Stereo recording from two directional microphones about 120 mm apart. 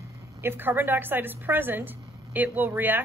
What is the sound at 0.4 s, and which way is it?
A woman's voice, 20° right (ahead or behind).